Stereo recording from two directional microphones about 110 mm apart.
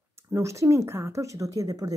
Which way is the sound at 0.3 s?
25° right (ahead or behind).